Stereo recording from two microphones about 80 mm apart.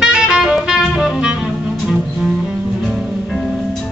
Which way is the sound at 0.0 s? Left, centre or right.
Centre.